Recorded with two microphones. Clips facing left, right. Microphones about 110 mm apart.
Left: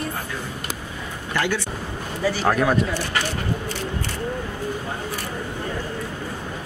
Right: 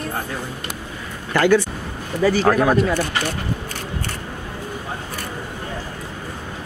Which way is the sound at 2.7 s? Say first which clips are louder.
Right 4 dB; 40° right (ahead or behind).